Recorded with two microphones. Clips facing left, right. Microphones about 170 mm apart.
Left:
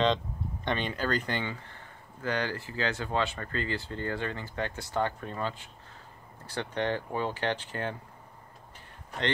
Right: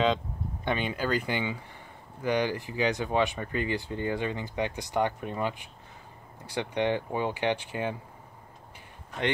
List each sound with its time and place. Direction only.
0.7 s speech: 10° right (ahead or behind)